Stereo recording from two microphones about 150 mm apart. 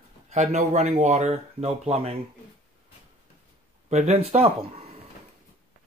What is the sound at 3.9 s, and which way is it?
Speech, 45° right (ahead or behind).